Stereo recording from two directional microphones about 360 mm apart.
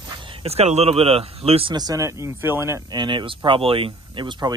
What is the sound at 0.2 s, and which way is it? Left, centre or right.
Speech, centre.